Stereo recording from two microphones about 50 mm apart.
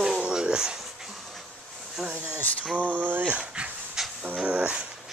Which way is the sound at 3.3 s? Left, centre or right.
Right.